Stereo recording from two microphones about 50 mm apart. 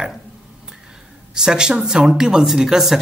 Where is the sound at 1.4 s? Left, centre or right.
Centre.